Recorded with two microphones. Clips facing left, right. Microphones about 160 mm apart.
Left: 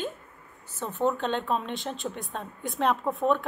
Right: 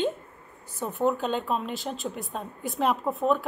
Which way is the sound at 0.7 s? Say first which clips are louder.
Right 1 dB; 5° right (ahead or behind).